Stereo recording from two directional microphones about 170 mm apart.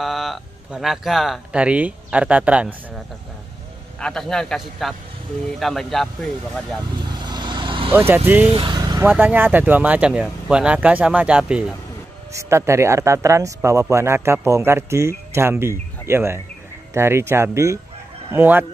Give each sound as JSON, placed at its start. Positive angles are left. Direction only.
{"t": 0.0, "sound": "speech", "side_deg": 0}
{"t": 4.0, "sound": "a man's voice", "side_deg": 5}
{"t": 7.1, "sound": "vehicle", "side_deg": -25}
{"t": 7.9, "sound": "speech", "side_deg": -10}
{"t": 8.5, "sound": "speech", "side_deg": -30}
{"t": 9.0, "sound": "speech", "side_deg": -10}
{"t": 12.3, "sound": "speech", "side_deg": -15}